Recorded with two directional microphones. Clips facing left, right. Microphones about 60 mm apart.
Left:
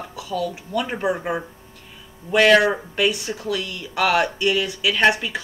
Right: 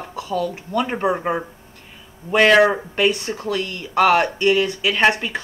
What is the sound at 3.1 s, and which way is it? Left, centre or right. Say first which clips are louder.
Speech: right 2 dB; right.